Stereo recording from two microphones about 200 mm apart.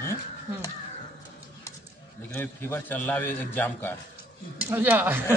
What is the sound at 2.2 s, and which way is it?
A man's voice, 10° left (ahead or behind).